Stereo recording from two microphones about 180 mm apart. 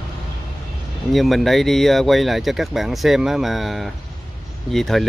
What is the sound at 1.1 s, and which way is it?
Speech, centre (ahead or behind).